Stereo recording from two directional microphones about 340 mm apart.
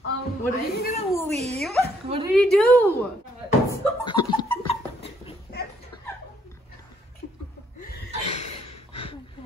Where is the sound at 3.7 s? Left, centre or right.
Centre.